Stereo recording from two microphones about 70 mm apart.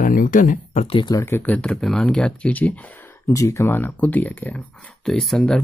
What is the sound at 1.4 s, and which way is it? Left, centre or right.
Speech, centre.